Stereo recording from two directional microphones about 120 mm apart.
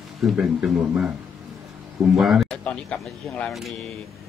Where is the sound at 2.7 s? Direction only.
10° left (ahead or behind).